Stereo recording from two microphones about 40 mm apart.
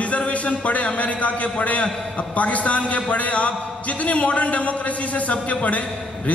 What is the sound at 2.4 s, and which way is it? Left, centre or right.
A man's voice, left.